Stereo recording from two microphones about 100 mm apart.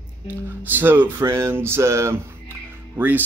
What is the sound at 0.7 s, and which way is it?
Speech, 20° right (ahead or behind).